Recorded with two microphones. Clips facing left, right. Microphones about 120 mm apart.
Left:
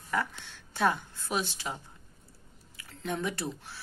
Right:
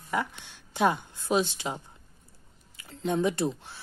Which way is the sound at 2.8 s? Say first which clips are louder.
Right 7 dB; 25° right (ahead or behind).